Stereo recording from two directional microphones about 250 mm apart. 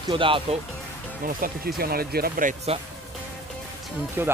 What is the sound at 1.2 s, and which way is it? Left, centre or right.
Speech, right.